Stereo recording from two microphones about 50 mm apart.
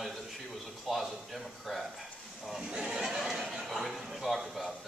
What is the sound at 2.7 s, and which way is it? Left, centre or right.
Speech, centre.